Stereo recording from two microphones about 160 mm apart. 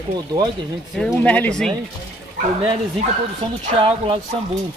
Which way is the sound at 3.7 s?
35° right (ahead or behind).